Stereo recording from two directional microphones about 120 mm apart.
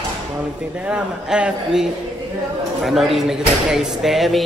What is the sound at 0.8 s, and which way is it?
A man's voice, 10° right (ahead or behind).